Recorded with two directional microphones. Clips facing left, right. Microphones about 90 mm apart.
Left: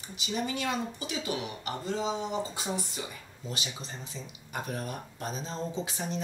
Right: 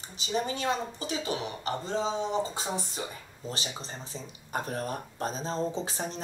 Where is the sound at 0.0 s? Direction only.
35° right (ahead or behind).